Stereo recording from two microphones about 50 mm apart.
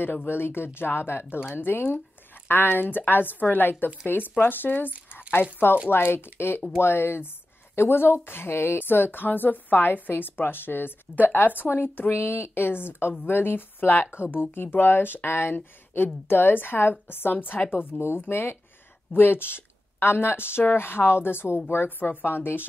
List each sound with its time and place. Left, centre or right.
0.0 s speech: left